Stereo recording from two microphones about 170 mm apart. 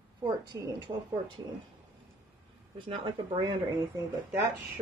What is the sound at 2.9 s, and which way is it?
Speech, 30° right (ahead or behind).